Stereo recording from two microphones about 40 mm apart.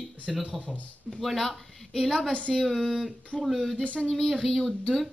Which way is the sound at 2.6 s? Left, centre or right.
Centre.